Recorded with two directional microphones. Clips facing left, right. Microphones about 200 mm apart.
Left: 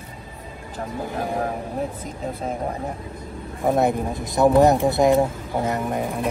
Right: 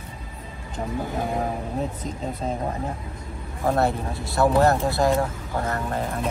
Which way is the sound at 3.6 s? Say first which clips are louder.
Left 3 dB; 15° left (ahead or behind).